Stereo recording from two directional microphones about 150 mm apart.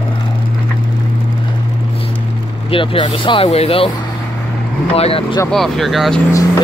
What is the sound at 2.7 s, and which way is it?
Speech, 35° left (ahead or behind).